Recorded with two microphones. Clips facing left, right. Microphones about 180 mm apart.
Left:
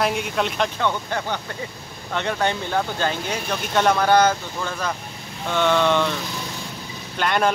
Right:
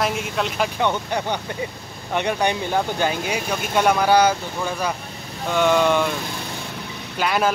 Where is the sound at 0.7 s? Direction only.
15° right (ahead or behind).